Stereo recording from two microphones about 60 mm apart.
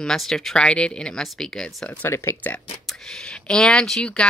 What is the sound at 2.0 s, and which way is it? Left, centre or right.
Speech, left.